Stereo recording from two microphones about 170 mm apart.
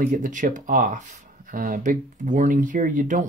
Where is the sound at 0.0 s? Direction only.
50° right (ahead or behind).